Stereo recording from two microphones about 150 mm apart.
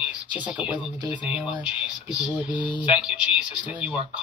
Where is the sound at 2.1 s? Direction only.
30° left (ahead or behind).